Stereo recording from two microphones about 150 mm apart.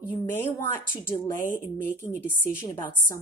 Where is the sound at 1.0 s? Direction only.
20° left (ahead or behind).